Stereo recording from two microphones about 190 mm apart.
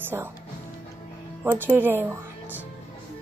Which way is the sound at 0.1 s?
15° right (ahead or behind).